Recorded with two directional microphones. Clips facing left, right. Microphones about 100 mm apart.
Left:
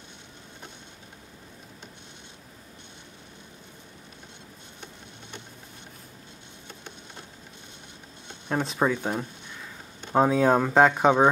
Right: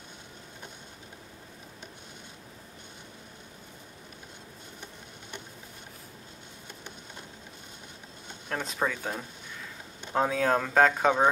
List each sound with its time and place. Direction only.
8.5 s speech: 20° left (ahead or behind)